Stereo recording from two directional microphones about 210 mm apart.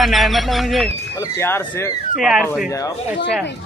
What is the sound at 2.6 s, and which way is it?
Speech, 15° left (ahead or behind).